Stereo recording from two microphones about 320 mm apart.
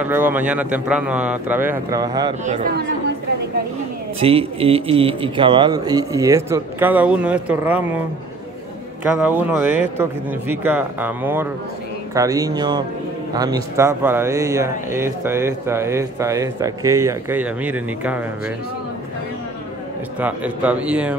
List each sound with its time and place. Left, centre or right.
0.0 s a man's voice: centre
2.4 s speech: right
4.2 s speech: centre
9.2 s a man's voice: centre
20.2 s a man's voice: centre